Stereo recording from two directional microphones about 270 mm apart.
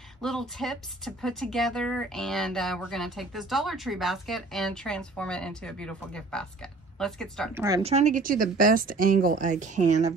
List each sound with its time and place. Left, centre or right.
0.2 s speech: centre
7.5 s speech: centre
7.9 s a woman's voice: right